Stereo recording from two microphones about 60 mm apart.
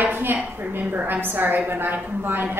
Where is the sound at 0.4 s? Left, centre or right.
Right.